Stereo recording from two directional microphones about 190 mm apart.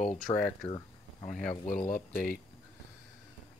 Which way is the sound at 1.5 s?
40° left (ahead or behind).